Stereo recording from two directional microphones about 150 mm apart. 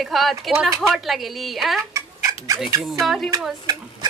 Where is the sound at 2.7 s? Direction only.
20° right (ahead or behind).